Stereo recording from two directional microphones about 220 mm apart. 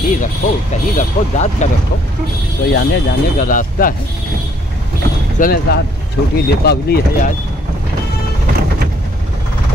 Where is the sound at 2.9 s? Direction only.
40° left (ahead or behind).